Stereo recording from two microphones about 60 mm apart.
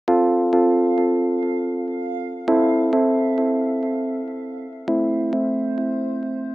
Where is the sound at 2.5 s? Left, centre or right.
Right.